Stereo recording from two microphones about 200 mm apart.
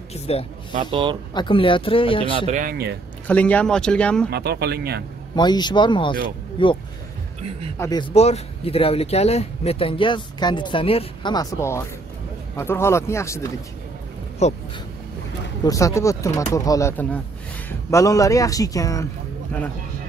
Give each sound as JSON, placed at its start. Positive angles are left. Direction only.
{"t": 0.1, "sound": "speech", "side_deg": 30}
{"t": 2.3, "sound": "speech", "side_deg": -35}
{"t": 3.3, "sound": "speech", "side_deg": 5}
{"t": 4.3, "sound": "speech", "side_deg": -55}
{"t": 5.3, "sound": "speech", "side_deg": 20}
{"t": 8.1, "sound": "speech", "side_deg": 30}
{"t": 14.4, "sound": "speech", "side_deg": 35}
{"t": 15.6, "sound": "speech", "side_deg": 15}